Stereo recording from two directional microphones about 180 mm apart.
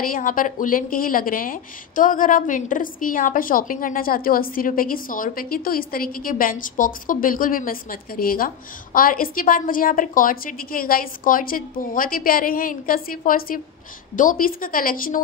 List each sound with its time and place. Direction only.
0.1 s a woman's voice: 50° left (ahead or behind)